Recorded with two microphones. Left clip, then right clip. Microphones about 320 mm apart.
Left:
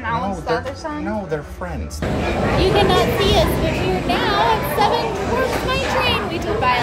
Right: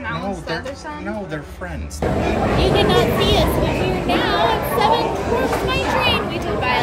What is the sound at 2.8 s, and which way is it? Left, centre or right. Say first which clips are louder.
A child's voice: even; centre.